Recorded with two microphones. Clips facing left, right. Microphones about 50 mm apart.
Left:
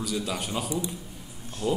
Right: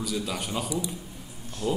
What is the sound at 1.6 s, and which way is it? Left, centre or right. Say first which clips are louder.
Speech: left 1 dB; left.